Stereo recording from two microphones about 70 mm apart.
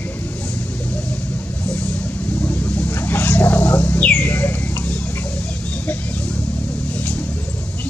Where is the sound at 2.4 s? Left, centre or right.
Left.